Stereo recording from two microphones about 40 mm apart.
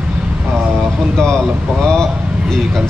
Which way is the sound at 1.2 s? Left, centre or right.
Centre.